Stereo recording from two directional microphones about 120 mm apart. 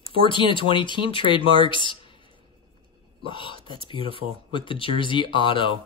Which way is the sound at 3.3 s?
45° left (ahead or behind).